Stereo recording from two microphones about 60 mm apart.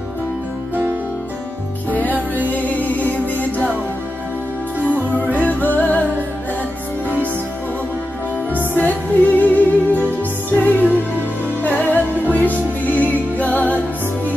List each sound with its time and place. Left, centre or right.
2.1 s music: right
2.7 s music: left
5.4 s music: left
8.7 s music: left